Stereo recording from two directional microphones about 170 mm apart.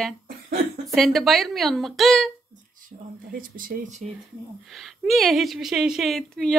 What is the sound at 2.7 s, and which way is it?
Speech, 55° right (ahead or behind).